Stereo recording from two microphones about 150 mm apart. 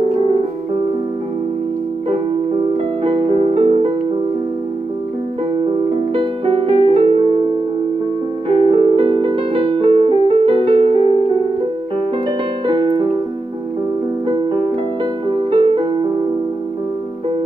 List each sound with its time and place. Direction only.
3.0 s music: 40° right (ahead or behind)
6.1 s music: 35° right (ahead or behind)
8.5 s music: 35° right (ahead or behind)
12.3 s music: 35° right (ahead or behind)
14.2 s music: 30° right (ahead or behind)